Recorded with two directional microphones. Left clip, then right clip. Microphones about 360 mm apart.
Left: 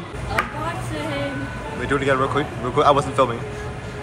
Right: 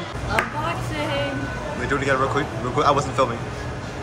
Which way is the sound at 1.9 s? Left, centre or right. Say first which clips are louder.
Left 2 dB; centre.